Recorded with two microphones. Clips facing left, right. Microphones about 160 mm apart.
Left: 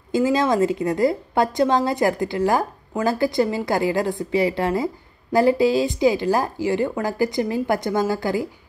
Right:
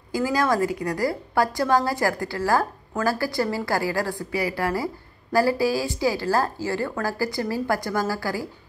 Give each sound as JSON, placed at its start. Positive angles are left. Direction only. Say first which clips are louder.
{"t": 0.1, "sound": "a woman's voice", "louder": "left 4 dB", "side_deg": 20}